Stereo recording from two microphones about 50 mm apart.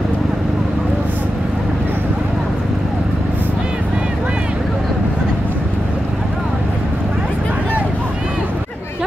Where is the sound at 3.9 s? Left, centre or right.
Right.